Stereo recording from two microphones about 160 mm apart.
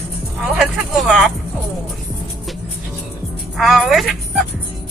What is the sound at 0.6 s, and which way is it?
Speech, centre (ahead or behind).